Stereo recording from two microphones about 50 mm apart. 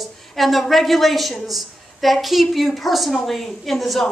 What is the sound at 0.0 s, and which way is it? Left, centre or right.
A child's voice, centre.